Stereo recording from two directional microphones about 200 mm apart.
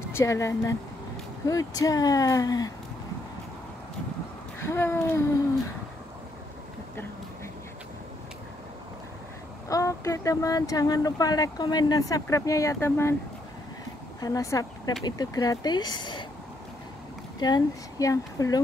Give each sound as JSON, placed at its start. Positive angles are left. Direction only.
{"t": 0.1, "sound": "speech", "side_deg": 15}
{"t": 4.6, "sound": "speech", "side_deg": 10}
{"t": 9.7, "sound": "speech", "side_deg": 15}
{"t": 14.2, "sound": "speech", "side_deg": 15}
{"t": 17.4, "sound": "speech", "side_deg": 20}